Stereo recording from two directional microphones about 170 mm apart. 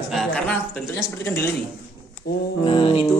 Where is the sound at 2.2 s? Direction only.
65° left (ahead or behind).